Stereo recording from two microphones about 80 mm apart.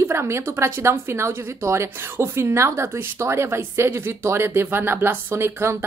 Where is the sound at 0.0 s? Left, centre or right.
Right.